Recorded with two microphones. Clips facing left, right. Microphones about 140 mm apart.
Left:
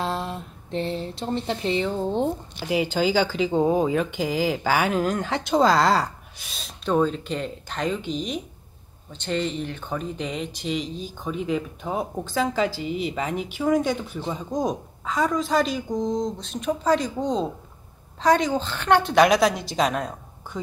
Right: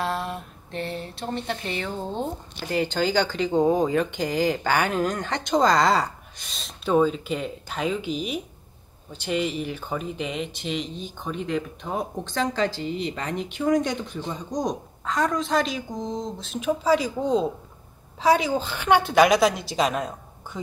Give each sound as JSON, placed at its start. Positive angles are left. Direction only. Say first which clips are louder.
{"t": 0.0, "sound": "speech", "louder": "even", "side_deg": 20}
{"t": 2.7, "sound": "speech", "louder": "left 1 dB", "side_deg": 5}